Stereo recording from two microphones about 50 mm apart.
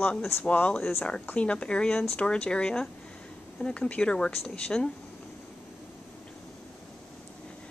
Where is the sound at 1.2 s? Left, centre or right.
Left.